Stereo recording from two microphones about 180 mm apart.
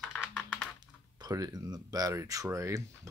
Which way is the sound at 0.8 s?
20° right (ahead or behind).